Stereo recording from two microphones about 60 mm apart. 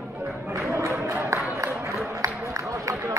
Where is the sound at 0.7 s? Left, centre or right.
Right.